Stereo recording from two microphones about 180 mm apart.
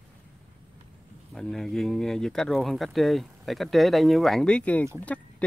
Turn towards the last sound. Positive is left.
turn(degrees=5)  # may be behind; listen again after turning